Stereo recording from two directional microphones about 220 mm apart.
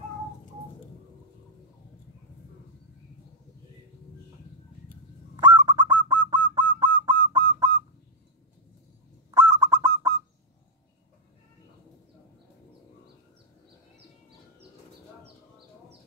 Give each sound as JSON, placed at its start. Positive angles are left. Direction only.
{"t": 5.3, "sound": "bird", "side_deg": -20}
{"t": 6.0, "sound": "honk", "side_deg": -20}
{"t": 6.8, "sound": "a sound", "side_deg": -20}
{"t": 9.3, "sound": "bird", "side_deg": -15}